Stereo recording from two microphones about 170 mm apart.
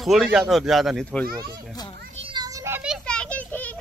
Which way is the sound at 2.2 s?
25° right (ahead or behind).